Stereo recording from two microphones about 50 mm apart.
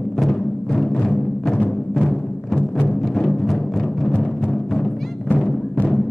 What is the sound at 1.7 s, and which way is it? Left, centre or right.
Timpani, centre.